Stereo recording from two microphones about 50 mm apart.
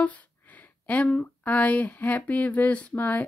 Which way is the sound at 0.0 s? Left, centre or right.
Left.